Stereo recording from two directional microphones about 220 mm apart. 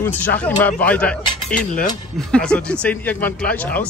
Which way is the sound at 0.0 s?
10° left (ahead or behind).